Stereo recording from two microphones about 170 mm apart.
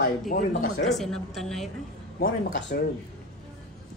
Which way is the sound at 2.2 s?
60° left (ahead or behind).